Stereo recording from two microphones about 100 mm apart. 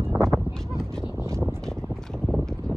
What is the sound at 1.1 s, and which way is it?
Vehicle, 25° right (ahead or behind).